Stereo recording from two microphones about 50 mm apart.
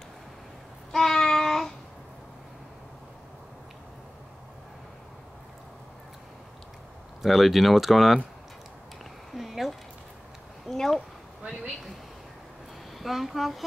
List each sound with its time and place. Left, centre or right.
0.9 s child singing: centre
7.2 s speech: centre
9.3 s a sound: centre
13.0 s speech: centre